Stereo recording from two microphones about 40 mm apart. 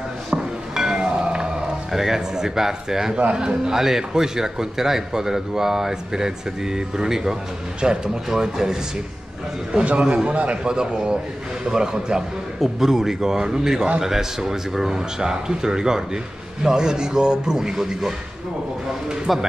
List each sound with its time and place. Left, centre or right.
0.3 s cat: centre
1.9 s a man's voice: centre
9.8 s a man's voice: right
10.3 s a man's voice: right
10.6 s a man's voice: centre
12.5 s a man's voice: centre
19.3 s speech: centre